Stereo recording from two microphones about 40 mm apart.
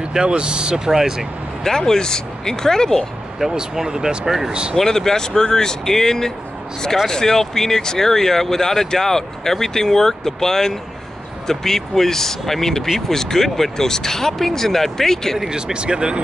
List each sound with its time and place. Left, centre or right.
0.1 s speech: right
1.6 s speech: centre
3.5 s speech: centre
4.7 s speech: centre
15.5 s speech: right